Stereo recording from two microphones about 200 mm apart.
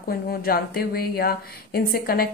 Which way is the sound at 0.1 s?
50° left (ahead or behind).